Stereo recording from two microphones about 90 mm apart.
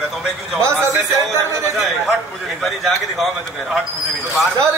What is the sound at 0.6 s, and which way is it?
Speech, 30° right (ahead or behind).